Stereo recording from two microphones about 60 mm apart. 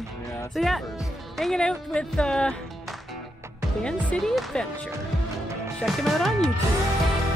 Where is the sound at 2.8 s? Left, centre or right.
Centre.